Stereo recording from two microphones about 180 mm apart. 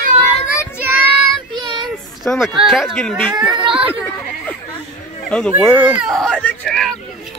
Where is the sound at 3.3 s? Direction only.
25° right (ahead or behind).